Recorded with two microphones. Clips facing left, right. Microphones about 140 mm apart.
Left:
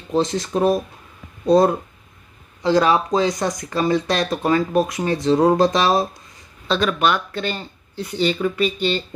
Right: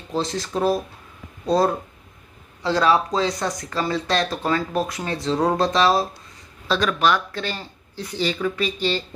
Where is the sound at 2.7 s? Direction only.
20° left (ahead or behind).